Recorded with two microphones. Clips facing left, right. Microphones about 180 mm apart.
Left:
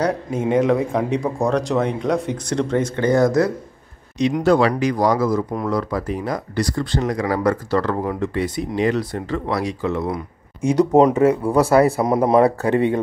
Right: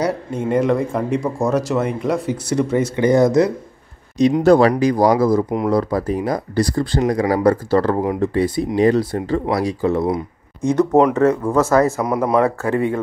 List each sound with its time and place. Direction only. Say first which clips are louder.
0.3 s a man's voice: left 1 dB; centre (ahead or behind); by 3.5 s 20° right (ahead or behind)
4.4 s speech: right 3 dB; 40° right (ahead or behind)
10.6 s speech: even; 10° left (ahead or behind)
12.0 s speech: left 2 dB; 25° left (ahead or behind)